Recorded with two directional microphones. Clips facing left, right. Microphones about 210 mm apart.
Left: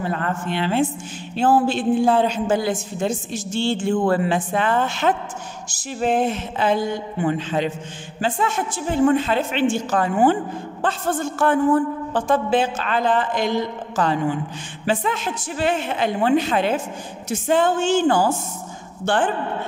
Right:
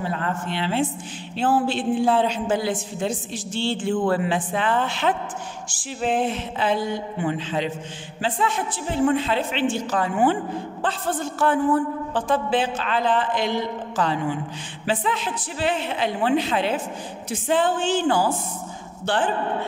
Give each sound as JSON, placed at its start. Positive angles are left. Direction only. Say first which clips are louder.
{"t": 0.1, "sound": "a woman's voice", "louder": "left 2 dB", "side_deg": 50}